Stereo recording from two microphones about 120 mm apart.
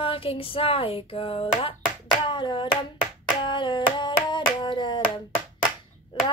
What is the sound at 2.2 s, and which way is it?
Hands, 40° left (ahead or behind).